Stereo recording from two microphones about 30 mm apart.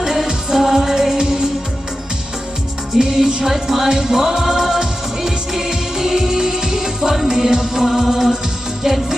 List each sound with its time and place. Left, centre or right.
0.0 s music: centre
1.1 s music: right
3.0 s music: right
3.4 s music: centre